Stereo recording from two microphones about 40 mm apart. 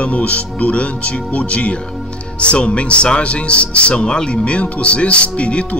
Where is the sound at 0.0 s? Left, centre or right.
Left.